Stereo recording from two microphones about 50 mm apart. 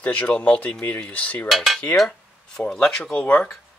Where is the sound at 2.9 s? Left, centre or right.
Centre.